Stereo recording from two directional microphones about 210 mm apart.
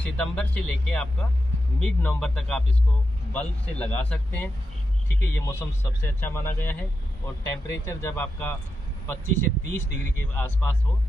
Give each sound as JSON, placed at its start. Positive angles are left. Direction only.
{"t": 0.0, "sound": "a man's voice", "side_deg": 5}